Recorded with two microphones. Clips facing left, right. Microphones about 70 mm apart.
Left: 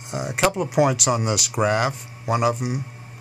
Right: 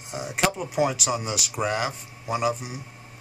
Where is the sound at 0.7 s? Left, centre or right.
Left.